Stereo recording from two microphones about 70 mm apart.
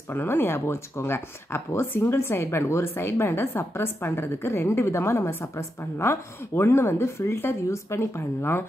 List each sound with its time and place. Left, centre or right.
0.1 s speech: left